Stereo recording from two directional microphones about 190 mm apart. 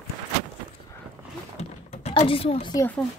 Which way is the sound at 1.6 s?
35° left (ahead or behind).